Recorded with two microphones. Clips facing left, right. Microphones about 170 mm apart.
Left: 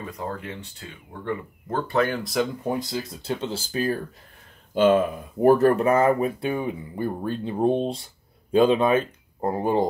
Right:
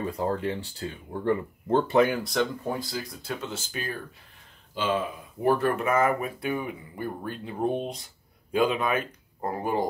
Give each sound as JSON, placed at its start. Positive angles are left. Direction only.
{"t": 0.0, "sound": "speech", "side_deg": -30}
{"t": 2.1, "sound": "speech", "side_deg": 0}
{"t": 2.6, "sound": "speech", "side_deg": 20}
{"t": 4.7, "sound": "speech", "side_deg": 50}